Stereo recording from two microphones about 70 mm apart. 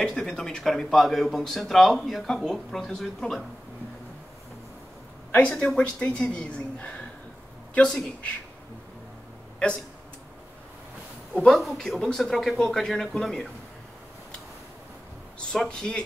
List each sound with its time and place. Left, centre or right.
0.0 s speech: centre
5.3 s speech: centre
11.3 s speech: centre
15.3 s speech: centre